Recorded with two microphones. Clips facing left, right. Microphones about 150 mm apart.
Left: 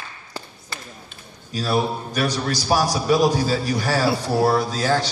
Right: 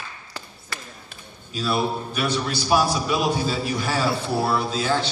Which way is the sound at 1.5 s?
40° left (ahead or behind).